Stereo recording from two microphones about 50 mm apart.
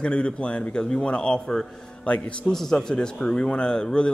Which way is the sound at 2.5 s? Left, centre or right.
Centre.